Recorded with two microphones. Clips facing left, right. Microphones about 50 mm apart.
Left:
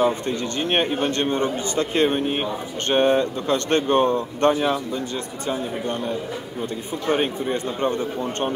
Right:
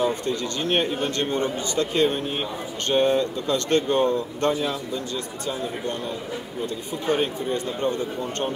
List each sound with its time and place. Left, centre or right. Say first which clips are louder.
0.7 s speech: left 2 dB; left
7.1 s speech: left 2 dB; left